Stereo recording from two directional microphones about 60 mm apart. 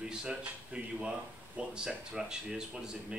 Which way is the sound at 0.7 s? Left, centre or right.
Centre.